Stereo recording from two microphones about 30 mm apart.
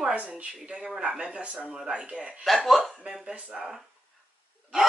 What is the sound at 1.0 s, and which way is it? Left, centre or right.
Speech, right.